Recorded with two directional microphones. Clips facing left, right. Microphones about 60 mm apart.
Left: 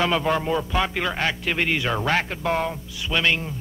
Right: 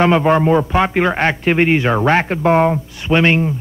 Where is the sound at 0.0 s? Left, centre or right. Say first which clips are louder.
Right 9 dB; right.